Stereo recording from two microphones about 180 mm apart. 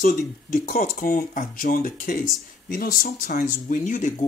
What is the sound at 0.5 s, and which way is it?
Speech, 50° left (ahead or behind).